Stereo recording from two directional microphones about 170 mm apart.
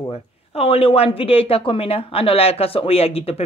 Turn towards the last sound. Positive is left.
turn(degrees=35)  # may be behind; listen again after turning